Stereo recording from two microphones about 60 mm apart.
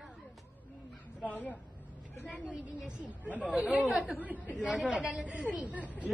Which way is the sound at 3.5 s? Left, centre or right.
Right.